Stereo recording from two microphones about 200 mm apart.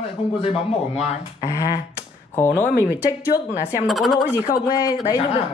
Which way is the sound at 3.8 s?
Centre (ahead or behind).